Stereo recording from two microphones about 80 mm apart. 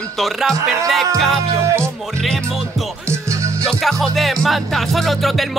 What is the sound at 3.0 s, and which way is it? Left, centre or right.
Music, right.